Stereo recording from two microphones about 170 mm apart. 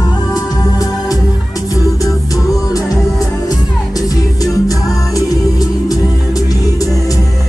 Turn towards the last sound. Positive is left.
turn(degrees=20)  # may be behind; listen again after turning